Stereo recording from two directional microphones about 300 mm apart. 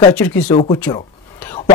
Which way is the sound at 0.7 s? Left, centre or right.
Centre.